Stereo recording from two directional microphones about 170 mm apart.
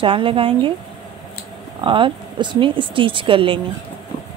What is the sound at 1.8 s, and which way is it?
Speech, 30° right (ahead or behind).